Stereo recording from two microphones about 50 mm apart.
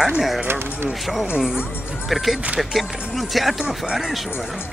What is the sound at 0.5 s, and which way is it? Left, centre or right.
Speech, right.